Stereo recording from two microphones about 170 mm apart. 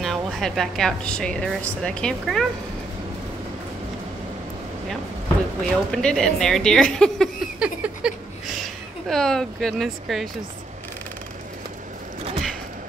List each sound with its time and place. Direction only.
0.0 s a woman's voice: centre (ahead or behind)
5.6 s a woman's voice: 5° left (ahead or behind)
7.5 s a sound: 5° right (ahead or behind)
9.0 s a woman's voice: centre (ahead or behind)